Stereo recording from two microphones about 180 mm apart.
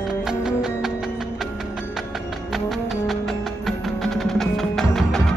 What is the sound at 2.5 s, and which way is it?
Music, centre (ahead or behind).